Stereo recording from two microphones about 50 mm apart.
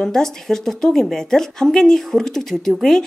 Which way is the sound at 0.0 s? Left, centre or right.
Centre.